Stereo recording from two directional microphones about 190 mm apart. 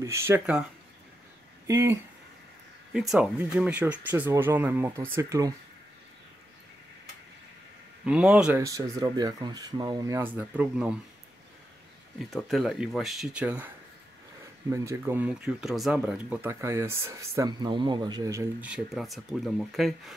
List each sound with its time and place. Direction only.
0.0 s speech: 15° right (ahead or behind)
1.7 s speech: 15° right (ahead or behind)
2.9 s speech: centre (ahead or behind)
8.0 s speech: 5° right (ahead or behind)
8.6 s speech: 15° right (ahead or behind)
12.2 s speech: centre (ahead or behind)
14.7 s speech: 15° right (ahead or behind)